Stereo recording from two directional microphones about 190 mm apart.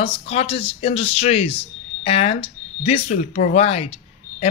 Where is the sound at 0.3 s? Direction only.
30° left (ahead or behind).